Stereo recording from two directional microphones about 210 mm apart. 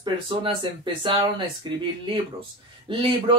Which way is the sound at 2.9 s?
25° right (ahead or behind).